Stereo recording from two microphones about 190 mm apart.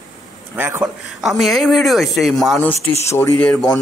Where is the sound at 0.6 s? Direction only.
10° right (ahead or behind).